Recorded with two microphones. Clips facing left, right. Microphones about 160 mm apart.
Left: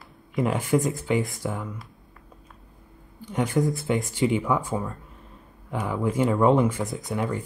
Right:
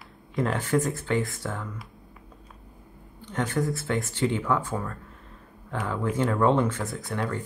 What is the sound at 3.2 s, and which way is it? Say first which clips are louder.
Speech: left 3 dB; 10° left (ahead or behind).